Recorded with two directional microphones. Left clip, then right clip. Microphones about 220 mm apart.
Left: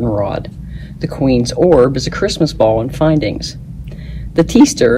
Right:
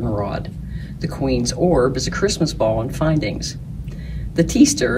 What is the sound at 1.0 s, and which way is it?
Speech, 25° left (ahead or behind).